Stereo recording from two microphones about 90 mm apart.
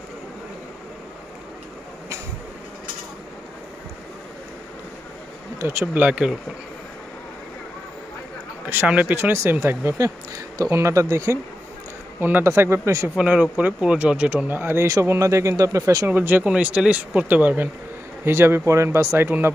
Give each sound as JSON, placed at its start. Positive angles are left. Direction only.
{"t": 5.6, "sound": "speech", "side_deg": -35}
{"t": 5.9, "sound": "speech", "side_deg": -20}
{"t": 8.6, "sound": "speech", "side_deg": -15}
{"t": 12.2, "sound": "speech", "side_deg": -20}
{"t": 13.1, "sound": "speech", "side_deg": -15}
{"t": 16.1, "sound": "speech", "side_deg": -20}